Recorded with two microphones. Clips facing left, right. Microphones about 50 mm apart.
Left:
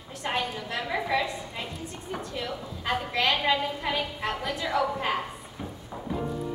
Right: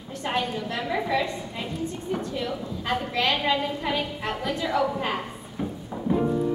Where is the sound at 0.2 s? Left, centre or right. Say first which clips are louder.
Right 3 dB; centre.